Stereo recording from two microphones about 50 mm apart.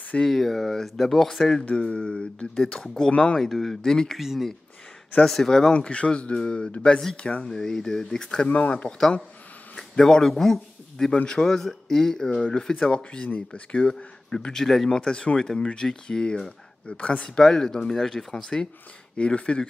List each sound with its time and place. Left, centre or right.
0.2 s speech: centre
1.7 s speech: left
3.1 s speech: left
3.3 s speech: centre
4.2 s speech: centre
5.2 s speech: centre
8.5 s speech: left
9.8 s speech: centre
12.4 s speech: left; by 15.0 s centre
15.0 s speech: centre
16.9 s speech: left
17.4 s speech: centre